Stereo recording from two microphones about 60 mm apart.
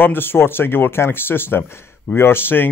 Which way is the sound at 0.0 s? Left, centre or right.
Left.